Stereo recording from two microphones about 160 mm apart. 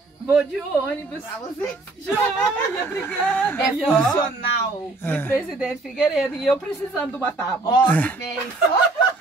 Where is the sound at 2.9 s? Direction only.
10° left (ahead or behind).